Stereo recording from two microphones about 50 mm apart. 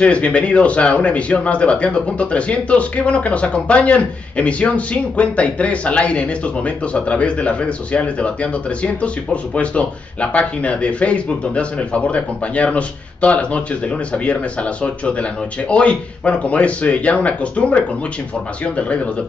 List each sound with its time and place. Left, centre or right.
0.0 s a man's voice: left